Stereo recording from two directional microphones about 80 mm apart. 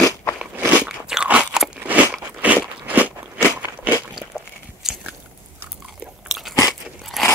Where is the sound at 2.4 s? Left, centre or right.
Right.